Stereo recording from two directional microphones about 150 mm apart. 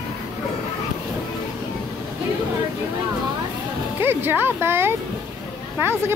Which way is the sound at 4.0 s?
15° right (ahead or behind).